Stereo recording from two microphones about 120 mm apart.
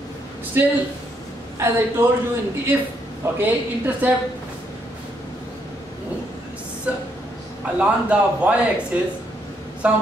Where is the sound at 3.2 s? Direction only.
20° right (ahead or behind).